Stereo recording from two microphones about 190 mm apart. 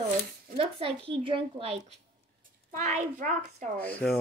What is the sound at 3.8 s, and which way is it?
Speech, 10° left (ahead or behind).